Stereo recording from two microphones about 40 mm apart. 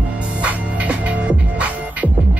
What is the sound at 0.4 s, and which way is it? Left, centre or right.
Music, right.